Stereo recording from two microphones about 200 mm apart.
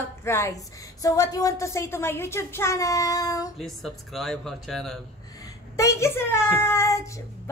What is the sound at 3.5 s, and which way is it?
Speech, centre (ahead or behind).